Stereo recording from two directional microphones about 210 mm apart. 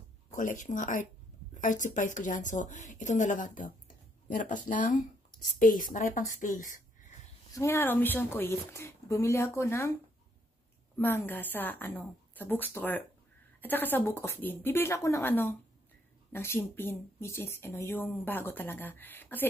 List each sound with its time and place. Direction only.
0.3 s a woman's voice: 35° left (ahead or behind)
7.5 s speech: 10° left (ahead or behind)
11.0 s speech: 10° left (ahead or behind)